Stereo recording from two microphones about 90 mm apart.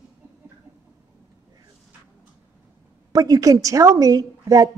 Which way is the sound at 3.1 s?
45° right (ahead or behind).